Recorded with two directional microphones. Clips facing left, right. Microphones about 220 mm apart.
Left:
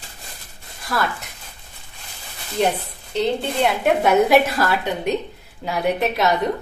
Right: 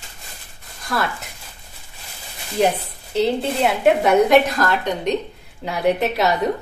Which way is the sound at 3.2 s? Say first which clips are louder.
Right 2 dB; centre (ahead or behind).